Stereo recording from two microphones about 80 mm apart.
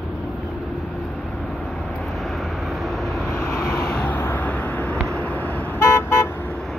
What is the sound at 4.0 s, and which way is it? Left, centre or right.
Vehicle, left.